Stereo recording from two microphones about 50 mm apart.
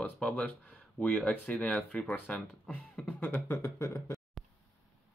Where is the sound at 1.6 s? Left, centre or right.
Centre.